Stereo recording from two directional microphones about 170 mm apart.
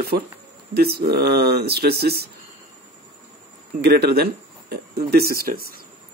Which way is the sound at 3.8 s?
65° right (ahead or behind).